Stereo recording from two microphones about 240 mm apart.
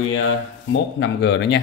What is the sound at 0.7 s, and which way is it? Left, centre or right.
Speech, left.